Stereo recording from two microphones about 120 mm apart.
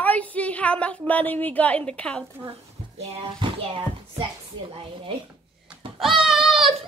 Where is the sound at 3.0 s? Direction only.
60° right (ahead or behind).